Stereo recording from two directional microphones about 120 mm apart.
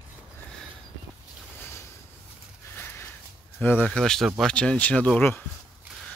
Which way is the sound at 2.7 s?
20° left (ahead or behind).